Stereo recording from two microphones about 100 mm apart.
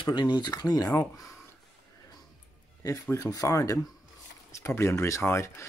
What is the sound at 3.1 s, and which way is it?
Speech, 35° left (ahead or behind).